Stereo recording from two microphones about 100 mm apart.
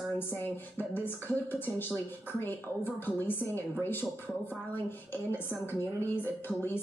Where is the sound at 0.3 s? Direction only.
20° left (ahead or behind).